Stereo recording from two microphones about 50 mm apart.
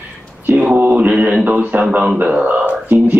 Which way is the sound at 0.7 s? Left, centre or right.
Right.